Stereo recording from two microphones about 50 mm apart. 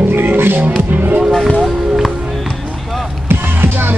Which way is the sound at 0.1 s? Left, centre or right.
Right.